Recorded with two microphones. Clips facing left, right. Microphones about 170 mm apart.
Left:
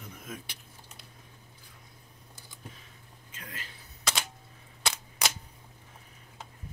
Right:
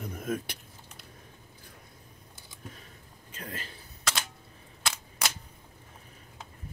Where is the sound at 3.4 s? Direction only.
35° right (ahead or behind).